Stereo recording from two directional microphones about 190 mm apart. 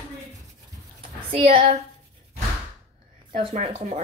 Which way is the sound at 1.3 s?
30° right (ahead or behind).